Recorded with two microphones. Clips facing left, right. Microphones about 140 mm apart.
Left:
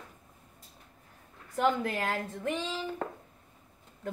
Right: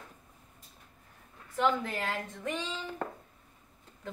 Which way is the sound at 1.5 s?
50° left (ahead or behind).